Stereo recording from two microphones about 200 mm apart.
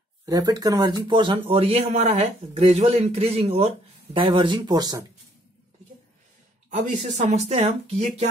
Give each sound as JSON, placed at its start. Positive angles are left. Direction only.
{"t": 0.2, "sound": "speech", "side_deg": -20}
{"t": 6.7, "sound": "speech", "side_deg": -35}